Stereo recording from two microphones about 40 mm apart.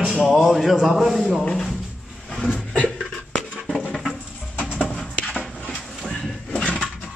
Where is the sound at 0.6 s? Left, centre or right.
Centre.